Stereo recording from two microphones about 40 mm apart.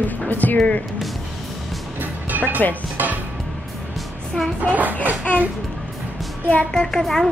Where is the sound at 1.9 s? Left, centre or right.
Right.